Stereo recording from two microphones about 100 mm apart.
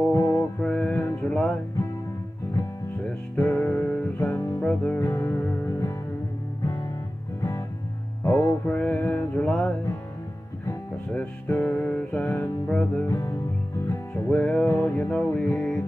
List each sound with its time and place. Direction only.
0.1 s music: 25° left (ahead or behind)
0.6 s music: 10° left (ahead or behind)
3.3 s music: 20° left (ahead or behind); by 6.9 s 35° left (ahead or behind)
8.6 s mantra: 15° left (ahead or behind)
11.1 s music: 15° left (ahead or behind)
13.1 s music: 30° left (ahead or behind)
14.3 s music: 15° left (ahead or behind)